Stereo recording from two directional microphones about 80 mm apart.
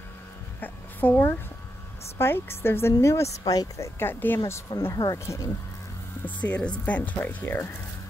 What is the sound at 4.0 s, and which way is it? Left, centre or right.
Speech, left.